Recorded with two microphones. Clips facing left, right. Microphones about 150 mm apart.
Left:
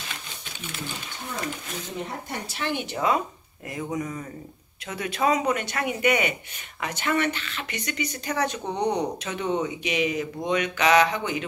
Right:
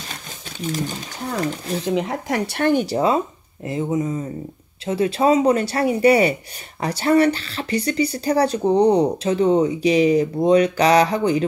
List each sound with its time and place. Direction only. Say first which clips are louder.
0.1 s a sound: right 4 dB; 40° right (ahead or behind)
1.9 s speech: right 12 dB; 90° right; by 2.7 s 65° right (ahead or behind)
2.7 s speech: right 6 dB; 40° right (ahead or behind)